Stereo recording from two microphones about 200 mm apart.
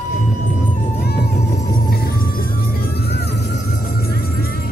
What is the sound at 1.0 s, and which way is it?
Music, 55° left (ahead or behind).